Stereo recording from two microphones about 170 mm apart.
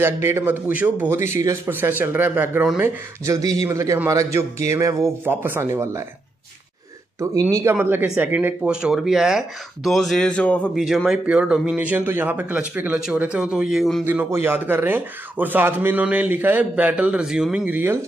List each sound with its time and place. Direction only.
0.0 s speech: 15° right (ahead or behind)
3.3 s speech: 20° right (ahead or behind)
7.2 s a man's voice: 15° right (ahead or behind); by 14.0 s centre (ahead or behind)
14.0 s speech: 15° right (ahead or behind)